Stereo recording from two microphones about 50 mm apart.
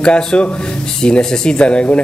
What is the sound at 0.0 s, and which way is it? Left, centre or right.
Speech, centre.